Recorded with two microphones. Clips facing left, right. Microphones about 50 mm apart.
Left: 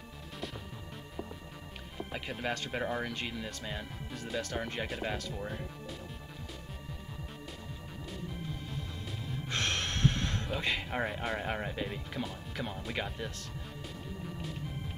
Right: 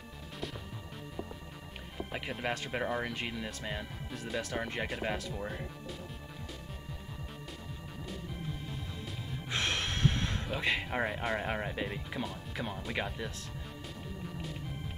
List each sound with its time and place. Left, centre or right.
2.4 s speech: centre
8.1 s music: centre
9.3 s speech: centre
14.2 s music: centre